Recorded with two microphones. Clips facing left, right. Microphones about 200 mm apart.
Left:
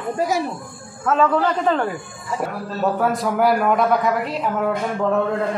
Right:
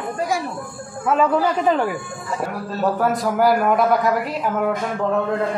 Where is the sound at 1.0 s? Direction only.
10° right (ahead or behind).